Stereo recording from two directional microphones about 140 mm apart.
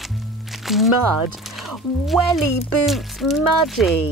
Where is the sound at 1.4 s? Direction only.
Centre (ahead or behind).